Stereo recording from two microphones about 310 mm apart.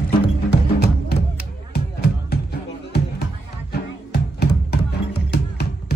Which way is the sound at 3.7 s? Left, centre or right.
Left.